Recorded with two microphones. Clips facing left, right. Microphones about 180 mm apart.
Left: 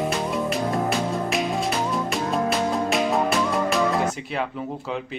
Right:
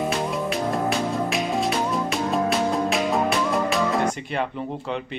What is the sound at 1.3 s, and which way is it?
Music, centre (ahead or behind).